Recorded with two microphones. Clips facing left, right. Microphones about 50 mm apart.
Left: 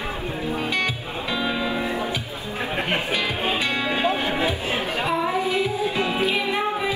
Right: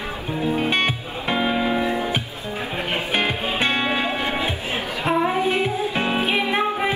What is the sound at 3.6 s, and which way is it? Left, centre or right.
Music, right.